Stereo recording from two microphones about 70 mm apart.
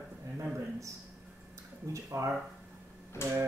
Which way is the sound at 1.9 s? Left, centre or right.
Right.